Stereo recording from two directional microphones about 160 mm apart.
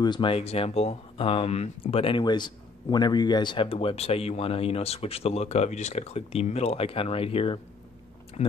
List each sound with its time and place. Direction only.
0.0 s speech: 30° left (ahead or behind)